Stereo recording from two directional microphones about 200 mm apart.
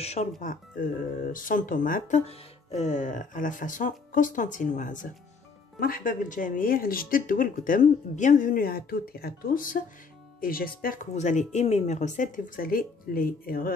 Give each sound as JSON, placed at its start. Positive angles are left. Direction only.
{"t": 0.0, "sound": "speech", "side_deg": 30}